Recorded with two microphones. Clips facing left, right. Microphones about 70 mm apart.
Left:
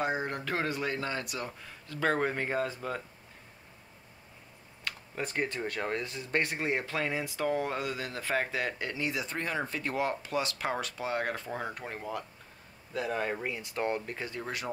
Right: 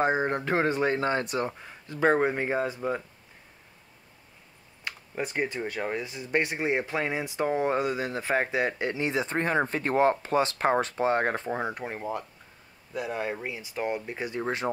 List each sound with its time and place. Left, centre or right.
0.0 s speech: right
4.8 s speech: centre
12.9 s speech: centre
14.4 s speech: right